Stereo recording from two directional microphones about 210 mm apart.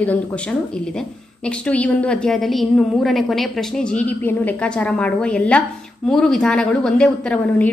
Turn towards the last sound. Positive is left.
turn(degrees=5)  # may be behind; listen again after turning